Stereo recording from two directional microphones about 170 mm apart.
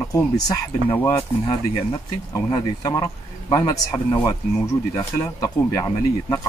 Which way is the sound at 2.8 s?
20° left (ahead or behind).